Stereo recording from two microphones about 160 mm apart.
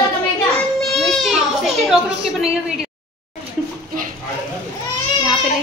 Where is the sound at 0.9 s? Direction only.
Centre (ahead or behind).